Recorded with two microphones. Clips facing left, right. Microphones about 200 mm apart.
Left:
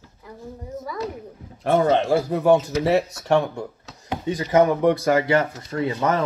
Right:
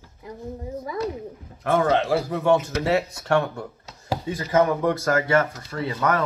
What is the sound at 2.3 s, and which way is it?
Speech, 30° left (ahead or behind).